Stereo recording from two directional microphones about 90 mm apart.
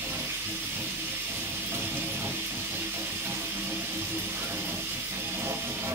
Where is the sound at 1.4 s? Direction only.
25° right (ahead or behind).